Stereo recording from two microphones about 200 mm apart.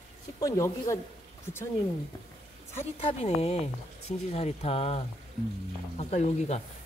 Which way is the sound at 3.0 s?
30° left (ahead or behind).